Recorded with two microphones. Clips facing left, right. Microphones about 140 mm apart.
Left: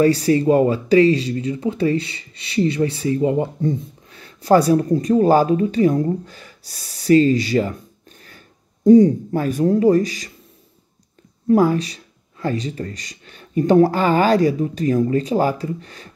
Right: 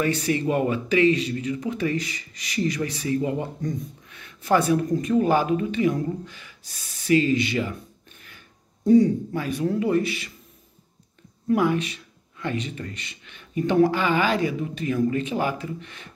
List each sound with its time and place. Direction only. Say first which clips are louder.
0.0 s speech: left 8 dB; 35° left (ahead or behind)
8.8 s speech: left 6 dB; 40° left (ahead or behind)
11.4 s speech: left 6 dB; 35° left (ahead or behind)